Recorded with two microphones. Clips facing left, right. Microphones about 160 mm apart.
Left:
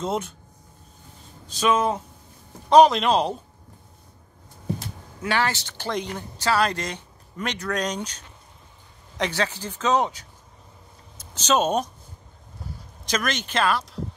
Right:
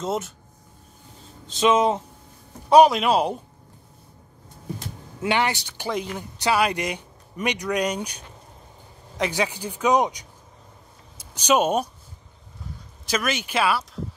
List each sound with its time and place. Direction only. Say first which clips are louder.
0.0 s speech: even; centre (ahead or behind)
1.5 s speech: right 3 dB; 20° right (ahead or behind)
2.7 s speech: even; 10° right (ahead or behind)
5.2 s speech: right 2 dB; 20° right (ahead or behind)
9.2 s speech: right 1 dB; 15° right (ahead or behind)
13.0 s speech: right 1 dB; 5° right (ahead or behind)